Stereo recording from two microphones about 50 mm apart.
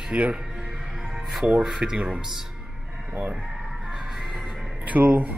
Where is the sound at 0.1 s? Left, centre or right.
Right.